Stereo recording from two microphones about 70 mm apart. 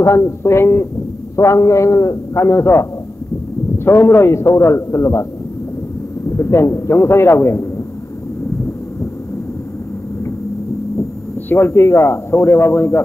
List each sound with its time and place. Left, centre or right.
0.0 s speech: left
1.3 s a man's voice: left
6.3 s speech: left
11.4 s speech: left